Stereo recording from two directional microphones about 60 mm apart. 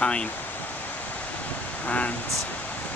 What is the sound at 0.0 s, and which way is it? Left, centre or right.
Speech, centre.